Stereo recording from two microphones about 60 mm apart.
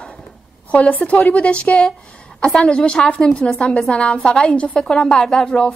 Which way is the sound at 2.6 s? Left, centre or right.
Centre.